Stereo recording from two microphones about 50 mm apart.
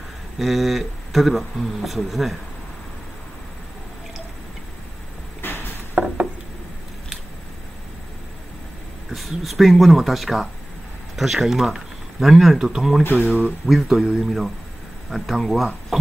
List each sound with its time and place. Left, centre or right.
0.4 s speech: centre
5.4 s a sound: left
6.0 s a sound: right
9.1 s speech: centre
13.2 s speech: right
13.7 s speech: centre